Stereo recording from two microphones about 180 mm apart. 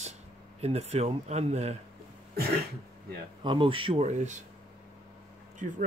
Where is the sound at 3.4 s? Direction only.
30° right (ahead or behind).